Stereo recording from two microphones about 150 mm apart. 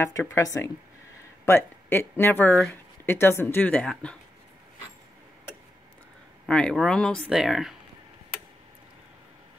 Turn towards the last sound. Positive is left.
turn(degrees=-5)  # may be behind; listen again after turning